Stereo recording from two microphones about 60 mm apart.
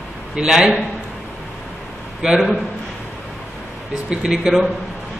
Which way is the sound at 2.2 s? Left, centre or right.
Centre.